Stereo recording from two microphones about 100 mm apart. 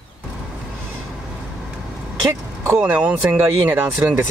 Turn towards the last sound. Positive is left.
turn(degrees=-15)  # may be behind; listen again after turning